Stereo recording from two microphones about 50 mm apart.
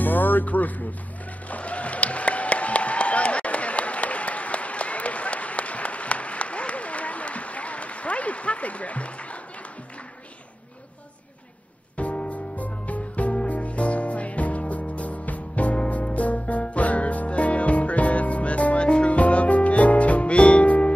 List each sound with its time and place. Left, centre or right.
0.0 s music: left
1.5 s a sound: left
12.0 s music: left